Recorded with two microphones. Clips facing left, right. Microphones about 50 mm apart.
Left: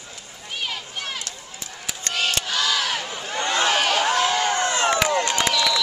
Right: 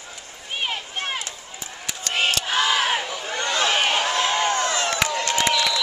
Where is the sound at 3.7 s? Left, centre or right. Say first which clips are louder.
Left 1 dB; centre.